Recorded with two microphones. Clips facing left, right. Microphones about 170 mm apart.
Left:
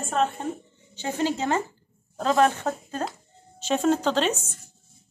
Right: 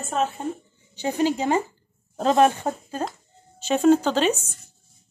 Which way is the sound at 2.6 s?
10° right (ahead or behind).